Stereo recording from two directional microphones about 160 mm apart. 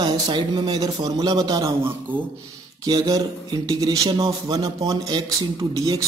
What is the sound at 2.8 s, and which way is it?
A man's voice, 25° right (ahead or behind).